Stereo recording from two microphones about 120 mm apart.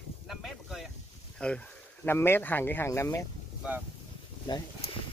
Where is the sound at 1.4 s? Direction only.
10° left (ahead or behind).